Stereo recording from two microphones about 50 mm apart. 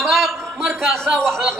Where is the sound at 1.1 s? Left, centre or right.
Centre.